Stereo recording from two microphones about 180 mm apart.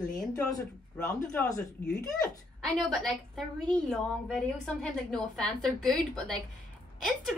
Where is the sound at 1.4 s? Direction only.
20° left (ahead or behind).